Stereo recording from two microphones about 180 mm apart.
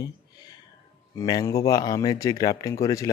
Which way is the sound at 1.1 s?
20° left (ahead or behind).